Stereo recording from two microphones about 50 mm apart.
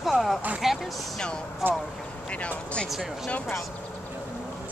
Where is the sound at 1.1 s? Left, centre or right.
Centre.